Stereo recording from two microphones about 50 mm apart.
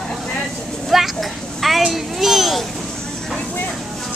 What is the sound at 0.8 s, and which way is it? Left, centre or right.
Speech, centre.